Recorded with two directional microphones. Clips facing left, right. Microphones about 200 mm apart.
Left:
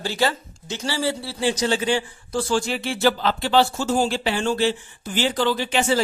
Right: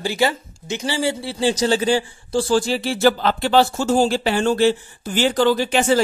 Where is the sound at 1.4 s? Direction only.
30° right (ahead or behind); by 6.0 s 50° right (ahead or behind).